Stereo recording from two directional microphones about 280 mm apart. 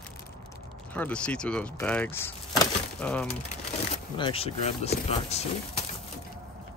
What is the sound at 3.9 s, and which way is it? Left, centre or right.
Speech, centre.